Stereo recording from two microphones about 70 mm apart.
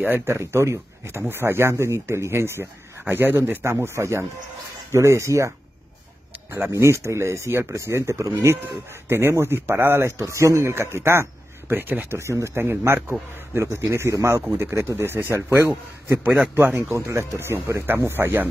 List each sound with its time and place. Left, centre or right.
0.0 s speech: right
6.7 s speech: right
9.1 s speech: right
10.2 s speech: right
12.2 s speech: right